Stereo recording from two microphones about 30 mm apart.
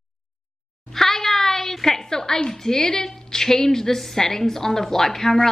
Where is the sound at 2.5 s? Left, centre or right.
Centre.